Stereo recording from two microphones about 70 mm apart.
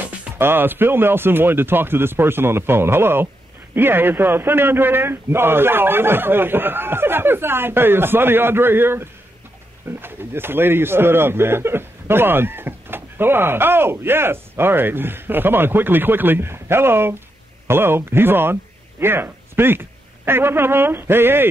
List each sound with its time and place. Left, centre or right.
0.4 s speech: right